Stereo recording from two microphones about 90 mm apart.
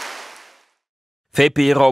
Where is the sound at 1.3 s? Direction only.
5° right (ahead or behind).